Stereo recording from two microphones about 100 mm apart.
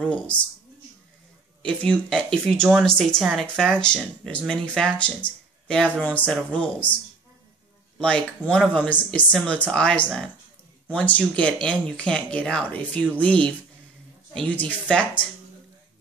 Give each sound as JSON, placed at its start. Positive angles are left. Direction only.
{"t": 0.0, "sound": "speech", "side_deg": 10}
{"t": 1.6, "sound": "speech", "side_deg": 10}
{"t": 8.0, "sound": "speech", "side_deg": 10}